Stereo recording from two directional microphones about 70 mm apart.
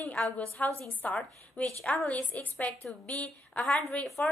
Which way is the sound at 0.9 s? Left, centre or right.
Left.